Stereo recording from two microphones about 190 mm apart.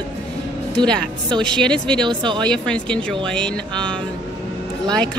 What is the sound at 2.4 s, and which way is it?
A woman's voice, 5° left (ahead or behind).